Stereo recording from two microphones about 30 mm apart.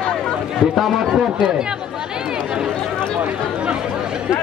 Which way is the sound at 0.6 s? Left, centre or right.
Right.